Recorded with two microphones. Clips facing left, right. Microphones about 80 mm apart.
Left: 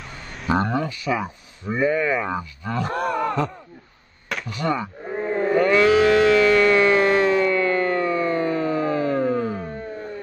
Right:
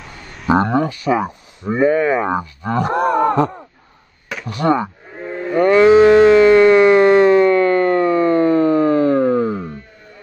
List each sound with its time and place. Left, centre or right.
0.0 s a sound: centre
0.7 s speech: right
1.8 s speech: right
3.0 s wail: right
3.3 s a sound: right
4.5 s speech: right
5.7 s livestock: right
7.5 s siren: right